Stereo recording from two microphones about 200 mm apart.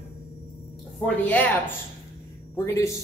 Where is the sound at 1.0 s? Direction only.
10° left (ahead or behind).